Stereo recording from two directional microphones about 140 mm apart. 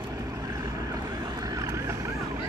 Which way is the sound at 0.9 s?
25° right (ahead or behind).